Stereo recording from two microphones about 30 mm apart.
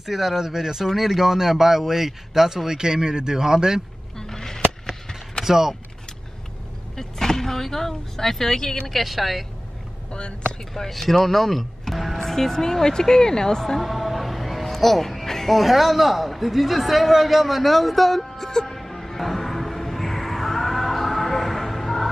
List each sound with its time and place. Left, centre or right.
0.0 s speech: centre
4.2 s a sound: centre
5.4 s speech: centre
7.0 s speech: centre
8.8 s a man's voice: centre
10.9 s a man's voice: centre
13.7 s a sound: centre
14.8 s speech: centre
15.5 s a man's voice: centre
18.4 s speech: centre
18.8 s music: centre